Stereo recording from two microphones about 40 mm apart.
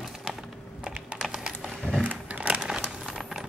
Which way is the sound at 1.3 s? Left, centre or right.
Centre.